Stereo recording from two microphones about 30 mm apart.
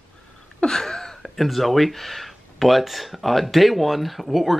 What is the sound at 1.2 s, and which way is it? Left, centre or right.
Speech, centre.